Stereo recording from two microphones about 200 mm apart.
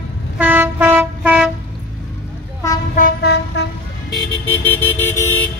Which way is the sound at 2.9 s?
50° left (ahead or behind).